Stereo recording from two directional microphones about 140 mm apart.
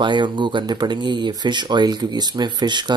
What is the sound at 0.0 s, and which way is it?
Speech, 35° right (ahead or behind).